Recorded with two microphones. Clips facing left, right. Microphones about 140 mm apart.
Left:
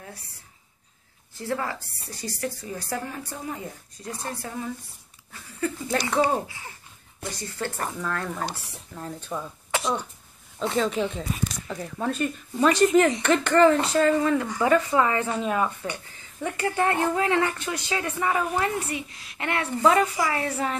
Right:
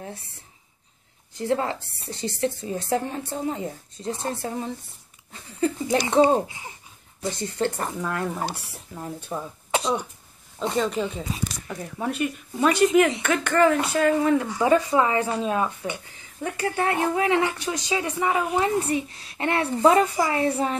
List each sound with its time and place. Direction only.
1.3 s a woman's voice: 20° right (ahead or behind)
10.7 s speech: centre (ahead or behind)
18.8 s a woman's voice: 30° right (ahead or behind)